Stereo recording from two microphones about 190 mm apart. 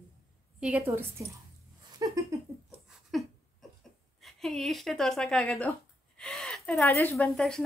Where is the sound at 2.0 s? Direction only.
20° right (ahead or behind).